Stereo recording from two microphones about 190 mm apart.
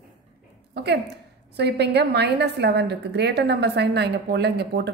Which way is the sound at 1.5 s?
60° right (ahead or behind).